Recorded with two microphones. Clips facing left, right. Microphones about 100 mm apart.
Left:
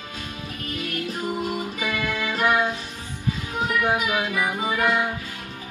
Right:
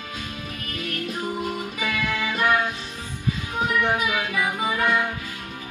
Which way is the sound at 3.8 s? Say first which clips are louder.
Left 1 dB; 10° left (ahead or behind).